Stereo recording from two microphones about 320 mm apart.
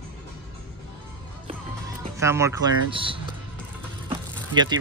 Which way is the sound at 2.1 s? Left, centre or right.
Centre.